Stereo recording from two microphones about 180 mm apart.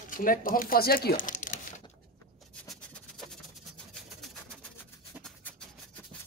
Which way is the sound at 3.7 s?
Centre (ahead or behind).